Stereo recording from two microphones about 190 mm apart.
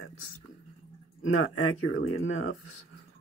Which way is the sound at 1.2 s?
90° left.